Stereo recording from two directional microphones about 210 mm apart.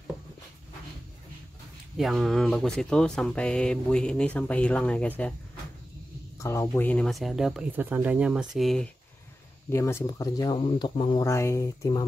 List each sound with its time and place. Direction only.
2.0 s speech: centre (ahead or behind)
6.4 s speech: 15° left (ahead or behind)
9.7 s speech: 10° left (ahead or behind)